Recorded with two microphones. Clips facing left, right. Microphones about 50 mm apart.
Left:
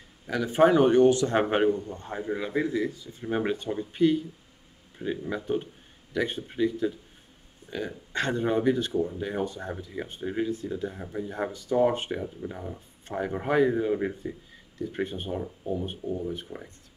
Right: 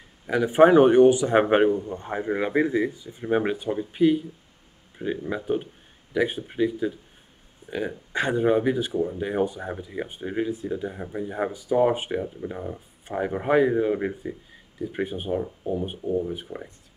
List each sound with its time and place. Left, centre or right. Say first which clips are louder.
0.3 s a man's voice: right 5 dB; centre